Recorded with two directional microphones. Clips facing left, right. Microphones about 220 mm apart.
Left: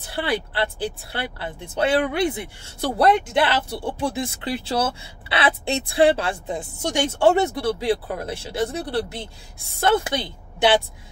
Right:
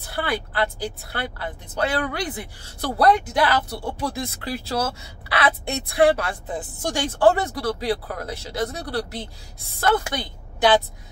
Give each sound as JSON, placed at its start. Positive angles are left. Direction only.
{"t": 0.1, "sound": "a woman's voice", "side_deg": 25}